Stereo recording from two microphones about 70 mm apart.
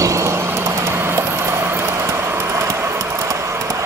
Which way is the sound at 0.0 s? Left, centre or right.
Right.